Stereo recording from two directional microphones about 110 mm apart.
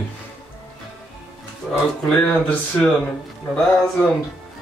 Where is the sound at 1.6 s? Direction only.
5° left (ahead or behind).